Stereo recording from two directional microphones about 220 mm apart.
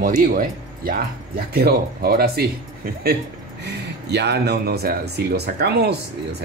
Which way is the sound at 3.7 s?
50° right (ahead or behind).